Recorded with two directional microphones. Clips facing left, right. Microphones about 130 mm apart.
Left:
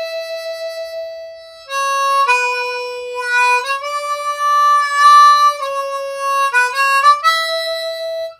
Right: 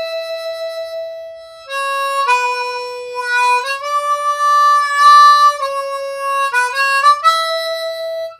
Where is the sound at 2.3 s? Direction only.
15° right (ahead or behind).